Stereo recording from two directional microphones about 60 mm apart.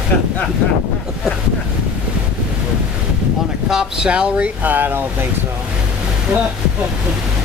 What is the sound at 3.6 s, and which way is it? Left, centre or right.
Speech, centre.